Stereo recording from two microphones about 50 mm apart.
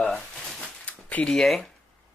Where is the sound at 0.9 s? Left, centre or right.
Left.